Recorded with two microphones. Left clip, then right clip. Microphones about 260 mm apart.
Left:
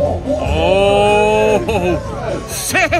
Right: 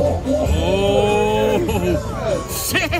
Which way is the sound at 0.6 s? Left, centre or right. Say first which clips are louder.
Left 8 dB; centre.